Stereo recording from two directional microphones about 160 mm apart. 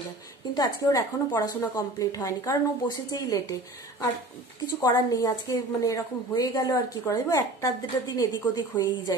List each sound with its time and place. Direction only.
0.6 s a woman's voice: 20° left (ahead or behind)
4.7 s a woman's voice: 25° left (ahead or behind)